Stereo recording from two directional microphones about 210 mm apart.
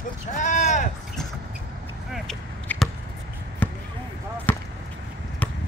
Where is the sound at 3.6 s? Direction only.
10° left (ahead or behind).